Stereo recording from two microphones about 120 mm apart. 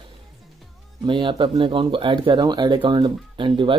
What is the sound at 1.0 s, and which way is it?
Speech, 40° right (ahead or behind).